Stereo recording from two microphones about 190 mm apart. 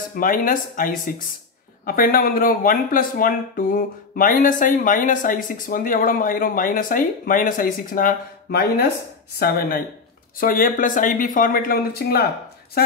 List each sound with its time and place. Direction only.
0.1 s speech: 45° left (ahead or behind)